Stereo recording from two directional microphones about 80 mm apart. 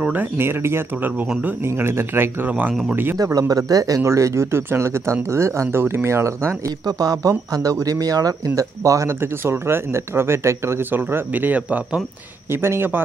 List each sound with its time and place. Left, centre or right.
0.1 s speech: right
3.3 s speech: right
6.9 s speech: right
9.2 s speech: right
12.4 s speech: right